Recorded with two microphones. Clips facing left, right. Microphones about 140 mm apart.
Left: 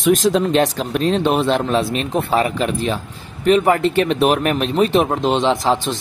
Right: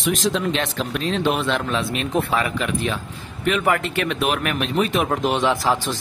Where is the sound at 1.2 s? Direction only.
30° left (ahead or behind).